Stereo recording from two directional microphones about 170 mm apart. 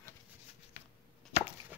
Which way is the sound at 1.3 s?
40° left (ahead or behind).